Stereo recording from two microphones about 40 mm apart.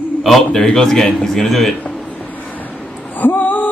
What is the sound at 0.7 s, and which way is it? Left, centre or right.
A man's voice, centre.